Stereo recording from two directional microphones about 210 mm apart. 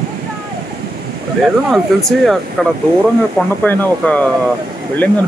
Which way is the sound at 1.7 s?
Centre (ahead or behind).